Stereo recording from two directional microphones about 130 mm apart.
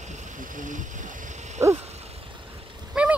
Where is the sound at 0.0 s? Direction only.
65° right (ahead or behind).